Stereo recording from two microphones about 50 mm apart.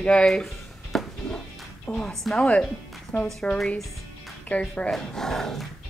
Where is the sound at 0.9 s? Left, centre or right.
Centre.